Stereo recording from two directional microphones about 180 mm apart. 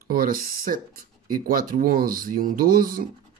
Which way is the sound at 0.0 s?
55° right (ahead or behind).